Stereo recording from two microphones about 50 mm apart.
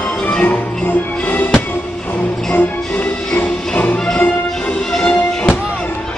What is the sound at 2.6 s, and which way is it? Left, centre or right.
Music, left.